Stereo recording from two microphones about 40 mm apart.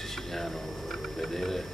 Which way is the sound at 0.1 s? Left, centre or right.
Centre.